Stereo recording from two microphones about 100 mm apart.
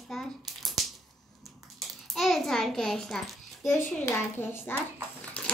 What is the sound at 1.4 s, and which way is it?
Hands, centre (ahead or behind).